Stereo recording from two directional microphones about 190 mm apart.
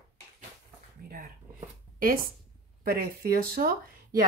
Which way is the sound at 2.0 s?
50° right (ahead or behind).